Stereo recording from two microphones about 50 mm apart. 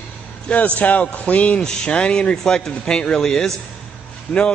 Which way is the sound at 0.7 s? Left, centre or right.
Left.